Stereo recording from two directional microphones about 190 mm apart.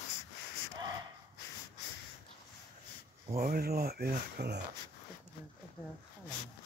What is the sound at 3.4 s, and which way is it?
Speech, 50° right (ahead or behind).